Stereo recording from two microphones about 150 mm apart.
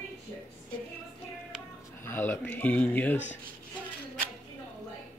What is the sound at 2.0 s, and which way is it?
Speech, 15° left (ahead or behind).